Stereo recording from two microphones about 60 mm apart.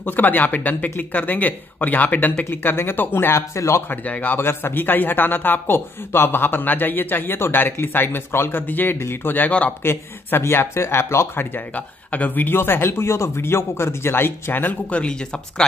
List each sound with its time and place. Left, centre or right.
0.0 s speech: left
3.9 s speech: left
9.5 s a man's voice: left
9.8 s speech: left
11.5 s speech: left
14.9 s speech: centre